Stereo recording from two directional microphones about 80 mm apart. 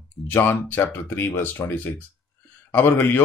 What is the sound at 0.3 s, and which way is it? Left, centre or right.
Speech, left.